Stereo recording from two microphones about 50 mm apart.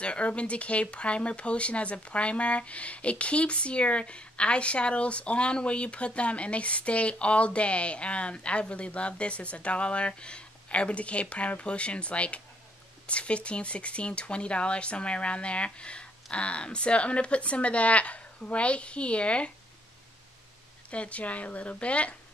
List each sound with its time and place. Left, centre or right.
0.0 s speech: left
20.9 s speech: left